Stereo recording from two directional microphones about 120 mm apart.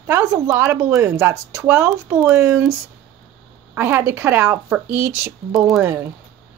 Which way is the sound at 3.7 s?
20° right (ahead or behind).